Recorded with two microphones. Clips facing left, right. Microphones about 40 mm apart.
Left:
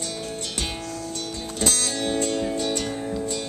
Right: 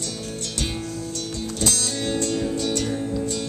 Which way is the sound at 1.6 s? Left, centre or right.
Centre.